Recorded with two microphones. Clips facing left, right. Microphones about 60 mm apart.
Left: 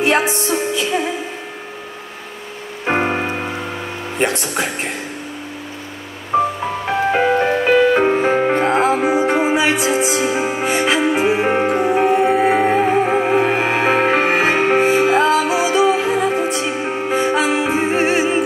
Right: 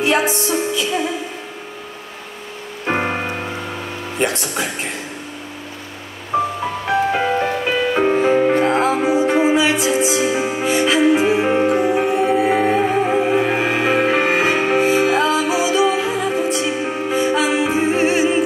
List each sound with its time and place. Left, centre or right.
0.0 s music: left
2.8 s music: centre
4.2 s speech: centre
6.3 s music: centre
6.9 s music: left